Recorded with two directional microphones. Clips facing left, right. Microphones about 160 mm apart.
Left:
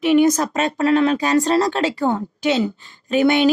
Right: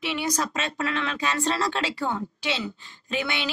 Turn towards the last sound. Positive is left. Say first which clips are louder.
# left 14 dB
turn(degrees=45)  # may be behind; listen again after turning